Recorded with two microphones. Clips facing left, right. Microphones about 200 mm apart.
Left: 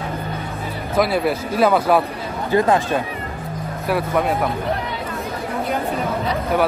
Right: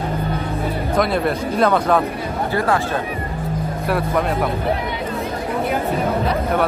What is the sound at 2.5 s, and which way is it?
Speech, 20° left (ahead or behind).